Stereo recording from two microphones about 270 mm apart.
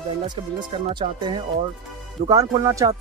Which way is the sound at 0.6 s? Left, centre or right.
Centre.